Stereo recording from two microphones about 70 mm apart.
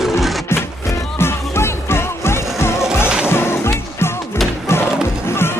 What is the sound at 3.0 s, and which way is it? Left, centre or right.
Music, centre.